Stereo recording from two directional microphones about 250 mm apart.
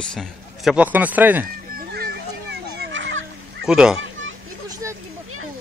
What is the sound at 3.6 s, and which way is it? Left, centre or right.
Speech, centre.